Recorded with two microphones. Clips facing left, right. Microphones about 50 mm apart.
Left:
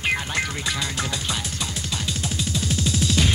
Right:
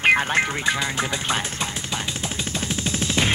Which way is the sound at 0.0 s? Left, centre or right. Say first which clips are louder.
Right 6 dB; right.